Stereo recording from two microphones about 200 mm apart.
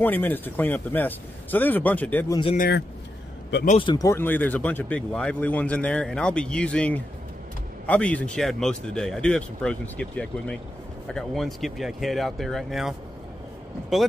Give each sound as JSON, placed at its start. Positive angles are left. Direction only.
{"t": 0.0, "sound": "speech", "side_deg": 10}
{"t": 2.5, "sound": "speech", "side_deg": 45}
{"t": 3.6, "sound": "speech", "side_deg": 25}